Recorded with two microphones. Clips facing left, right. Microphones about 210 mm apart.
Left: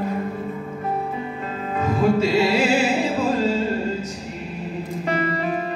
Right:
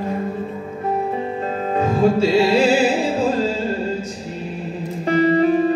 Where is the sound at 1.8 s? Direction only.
30° right (ahead or behind).